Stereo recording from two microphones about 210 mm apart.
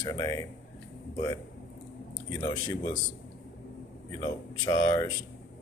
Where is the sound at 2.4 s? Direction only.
20° left (ahead or behind).